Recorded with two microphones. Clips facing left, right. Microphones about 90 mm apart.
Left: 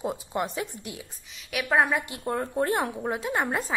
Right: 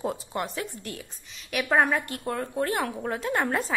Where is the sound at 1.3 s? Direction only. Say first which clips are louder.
Right 1 dB; centre (ahead or behind).